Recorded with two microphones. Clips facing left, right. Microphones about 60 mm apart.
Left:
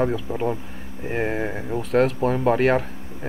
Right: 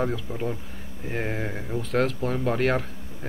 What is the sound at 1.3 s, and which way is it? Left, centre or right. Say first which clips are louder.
A man's voice: left 4 dB; centre.